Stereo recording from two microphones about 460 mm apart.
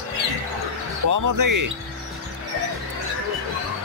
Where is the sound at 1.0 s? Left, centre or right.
Right.